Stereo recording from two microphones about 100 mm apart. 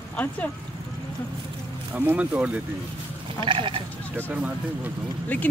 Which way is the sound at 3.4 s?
60° right (ahead or behind).